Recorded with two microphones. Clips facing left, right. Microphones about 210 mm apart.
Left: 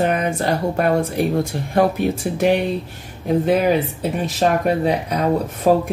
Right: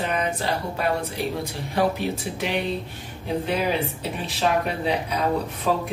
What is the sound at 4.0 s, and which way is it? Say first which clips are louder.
Speech: left 7 dB; 45° left (ahead or behind).